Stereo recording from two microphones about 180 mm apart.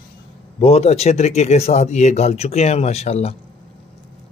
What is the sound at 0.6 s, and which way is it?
Speech, 35° left (ahead or behind).